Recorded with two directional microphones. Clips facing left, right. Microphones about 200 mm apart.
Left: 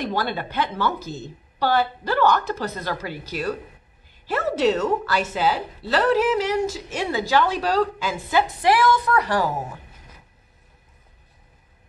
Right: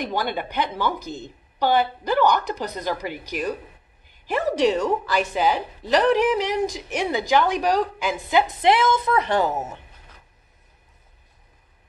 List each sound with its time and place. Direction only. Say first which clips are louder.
0.0 s a woman's voice: even; 15° right (ahead or behind)